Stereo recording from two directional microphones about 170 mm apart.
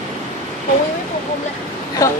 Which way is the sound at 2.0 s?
20° left (ahead or behind).